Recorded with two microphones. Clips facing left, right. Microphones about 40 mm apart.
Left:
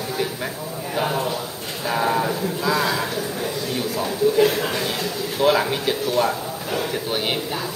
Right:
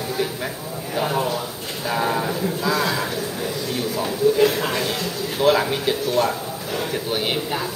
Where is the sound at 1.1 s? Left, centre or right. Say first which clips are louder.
Right 1 dB; centre.